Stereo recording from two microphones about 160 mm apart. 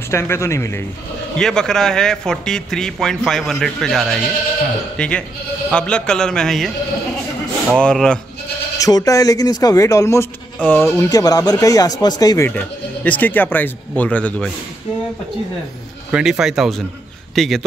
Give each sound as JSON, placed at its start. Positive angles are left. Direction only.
{"t": 0.1, "sound": "speech", "side_deg": 15}
{"t": 1.4, "sound": "speech", "side_deg": 5}
{"t": 7.7, "sound": "speech", "side_deg": 5}
{"t": 8.7, "sound": "speech", "side_deg": 20}
{"t": 12.4, "sound": "speech", "side_deg": 10}
{"t": 16.1, "sound": "speech", "side_deg": -5}